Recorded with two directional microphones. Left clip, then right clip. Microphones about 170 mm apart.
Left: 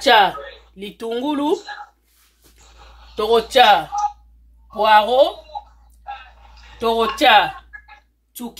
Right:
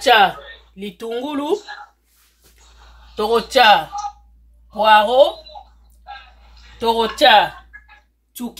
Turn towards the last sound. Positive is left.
turn(degrees=10)  # may be behind; listen again after turning